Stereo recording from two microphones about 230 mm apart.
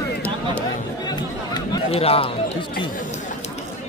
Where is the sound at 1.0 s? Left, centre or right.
Centre.